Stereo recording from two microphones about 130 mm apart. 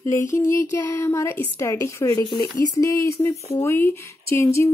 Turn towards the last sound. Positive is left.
turn(degrees=20)  # may be behind; listen again after turning